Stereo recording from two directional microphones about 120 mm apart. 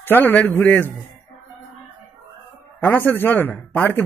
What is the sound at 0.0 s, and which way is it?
Speech, 15° left (ahead or behind).